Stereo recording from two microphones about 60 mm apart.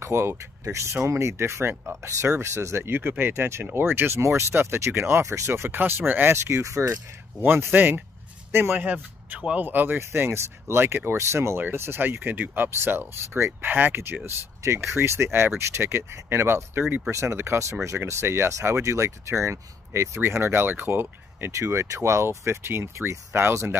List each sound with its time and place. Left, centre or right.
0.0 s speech: right
2.8 s speech: right
6.3 s speech: right
7.4 s speech: right
8.7 s a man's voice: right
10.1 s speech: right
11.6 s speech: right
14.6 s speech: right
21.5 s speech: right